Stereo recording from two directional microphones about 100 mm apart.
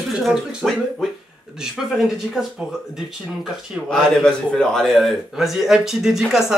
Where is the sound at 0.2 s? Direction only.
5° right (ahead or behind).